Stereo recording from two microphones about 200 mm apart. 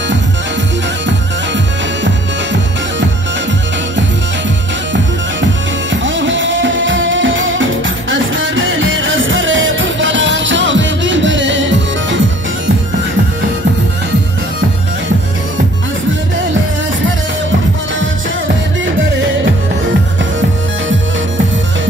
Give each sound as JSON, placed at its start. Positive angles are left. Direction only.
{"t": 2.0, "sound": "music", "side_deg": -65}
{"t": 6.0, "sound": "music", "side_deg": -70}